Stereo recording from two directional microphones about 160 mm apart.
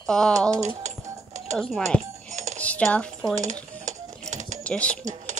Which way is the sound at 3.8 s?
50° right (ahead or behind).